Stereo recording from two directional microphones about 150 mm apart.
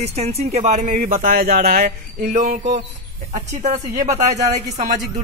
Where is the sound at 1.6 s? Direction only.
90° right.